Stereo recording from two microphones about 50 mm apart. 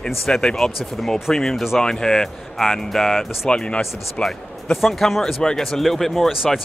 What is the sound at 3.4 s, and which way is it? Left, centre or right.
Speech, left.